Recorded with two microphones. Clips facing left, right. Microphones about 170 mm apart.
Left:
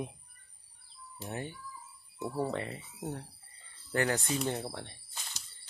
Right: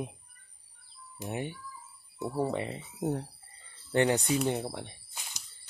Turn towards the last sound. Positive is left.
turn(degrees=-10)  # may be behind; listen again after turning